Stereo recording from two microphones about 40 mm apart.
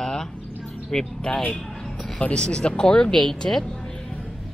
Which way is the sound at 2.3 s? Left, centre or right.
Left.